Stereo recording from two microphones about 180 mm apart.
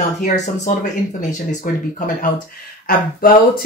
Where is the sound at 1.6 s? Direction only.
50° left (ahead or behind).